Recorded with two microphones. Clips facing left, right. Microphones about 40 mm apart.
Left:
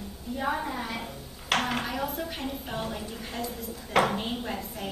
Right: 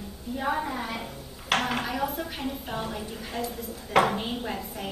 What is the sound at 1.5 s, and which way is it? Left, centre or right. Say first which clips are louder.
A woman's voice: right 1 dB; centre.